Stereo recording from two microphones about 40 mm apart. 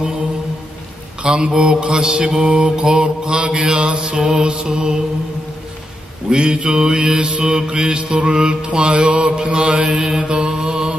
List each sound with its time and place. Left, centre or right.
1.2 s mantra: right
6.3 s mantra: right
10.6 s mantra: centre